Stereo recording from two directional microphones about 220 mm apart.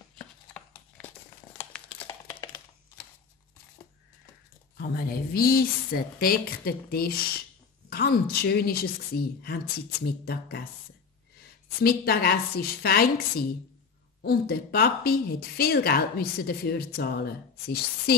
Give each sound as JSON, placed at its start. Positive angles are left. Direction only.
{"t": 1.6, "sound": "crumpling", "side_deg": 10}
{"t": 4.7, "sound": "speech", "side_deg": 45}
{"t": 11.8, "sound": "speech", "side_deg": 45}